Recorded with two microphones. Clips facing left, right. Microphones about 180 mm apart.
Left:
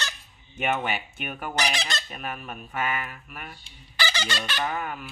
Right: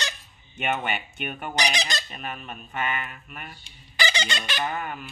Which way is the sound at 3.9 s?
15° right (ahead or behind).